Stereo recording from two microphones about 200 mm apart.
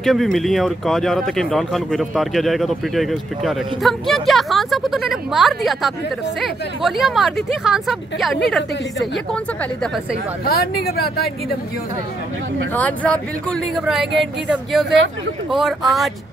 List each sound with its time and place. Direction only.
0.0 s speech: centre (ahead or behind)
10.4 s speech: 50° left (ahead or behind)
12.7 s speech: 5° left (ahead or behind)